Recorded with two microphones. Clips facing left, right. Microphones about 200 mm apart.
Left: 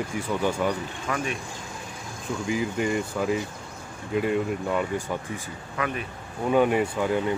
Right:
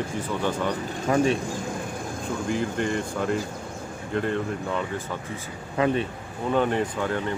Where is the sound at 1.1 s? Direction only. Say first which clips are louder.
Right 8 dB; 30° right (ahead or behind).